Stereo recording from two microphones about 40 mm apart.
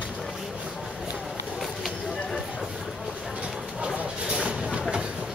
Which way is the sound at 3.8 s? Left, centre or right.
Right.